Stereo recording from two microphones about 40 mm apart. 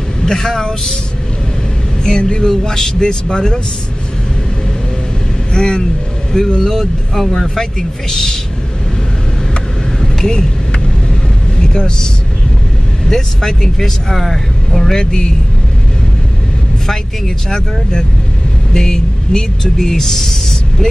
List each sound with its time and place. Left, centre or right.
0.2 s speech: centre
2.0 s speech: left
5.5 s speech: centre
9.9 s vehicle: centre
11.5 s vehicle: centre
13.1 s speech: centre
18.7 s speech: centre